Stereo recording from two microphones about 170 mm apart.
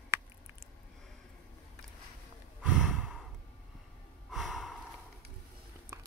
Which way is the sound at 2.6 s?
5° right (ahead or behind).